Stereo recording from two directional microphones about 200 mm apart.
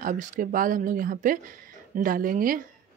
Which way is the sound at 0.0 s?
40° right (ahead or behind).